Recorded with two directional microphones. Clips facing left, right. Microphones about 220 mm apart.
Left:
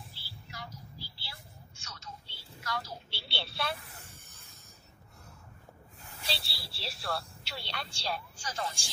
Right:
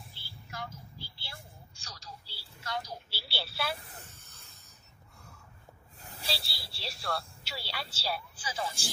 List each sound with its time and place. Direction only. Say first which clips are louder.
0.1 s music: right 3 dB; 50° right (ahead or behind)
1.8 s telephone: left 1 dB; 35° right (ahead or behind)
2.7 s telephone: right 1 dB; 15° right (ahead or behind)
3.1 s telephone: even; 5° right (ahead or behind)
4.0 s stir: even; 15° left (ahead or behind)
6.2 s a sound: right 1 dB; centre (ahead or behind)
6.8 s speech: right 1 dB; centre (ahead or behind)